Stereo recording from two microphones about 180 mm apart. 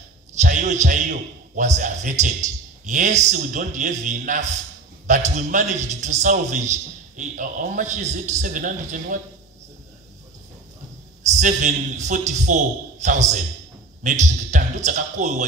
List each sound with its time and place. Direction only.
0.4 s a man's voice: 45° right (ahead or behind)
11.2 s a man's voice: 45° right (ahead or behind)
14.5 s a man's voice: 45° right (ahead or behind)